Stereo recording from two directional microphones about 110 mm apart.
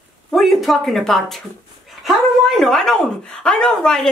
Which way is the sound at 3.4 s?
5° left (ahead or behind).